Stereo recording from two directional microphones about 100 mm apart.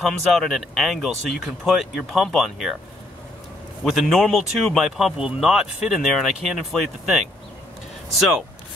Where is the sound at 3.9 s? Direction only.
Centre (ahead or behind).